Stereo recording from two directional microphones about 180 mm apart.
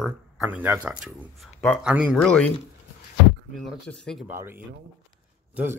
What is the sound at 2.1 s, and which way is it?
Speech, 5° left (ahead or behind).